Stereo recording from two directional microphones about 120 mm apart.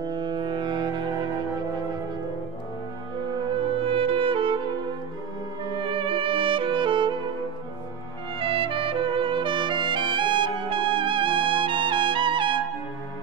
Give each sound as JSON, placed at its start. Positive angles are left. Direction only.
{"t": 0.0, "sound": "music", "side_deg": -40}
{"t": 3.8, "sound": "music", "side_deg": -50}
{"t": 5.7, "sound": "music", "side_deg": -45}
{"t": 8.4, "sound": "music", "side_deg": -50}